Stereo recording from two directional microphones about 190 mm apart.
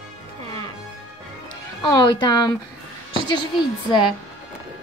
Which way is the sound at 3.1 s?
25° left (ahead or behind).